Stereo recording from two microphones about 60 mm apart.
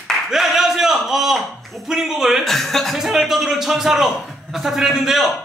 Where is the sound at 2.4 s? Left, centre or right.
Centre.